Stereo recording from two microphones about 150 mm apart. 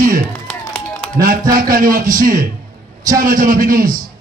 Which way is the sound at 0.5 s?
5° left (ahead or behind).